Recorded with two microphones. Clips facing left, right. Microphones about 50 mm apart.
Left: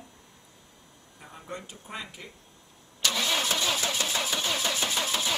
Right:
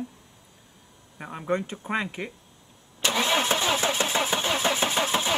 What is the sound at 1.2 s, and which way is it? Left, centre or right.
Speech, right.